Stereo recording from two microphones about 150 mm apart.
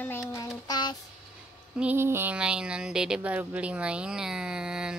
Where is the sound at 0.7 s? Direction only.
30° left (ahead or behind).